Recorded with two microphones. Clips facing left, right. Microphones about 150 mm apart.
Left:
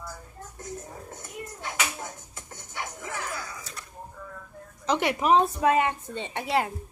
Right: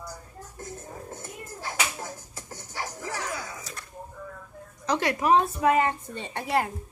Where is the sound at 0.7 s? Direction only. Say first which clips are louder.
Right 1 dB; centre (ahead or behind).